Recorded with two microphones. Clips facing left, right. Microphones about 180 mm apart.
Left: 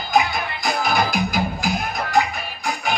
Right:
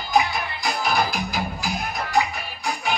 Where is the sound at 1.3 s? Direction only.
45° left (ahead or behind).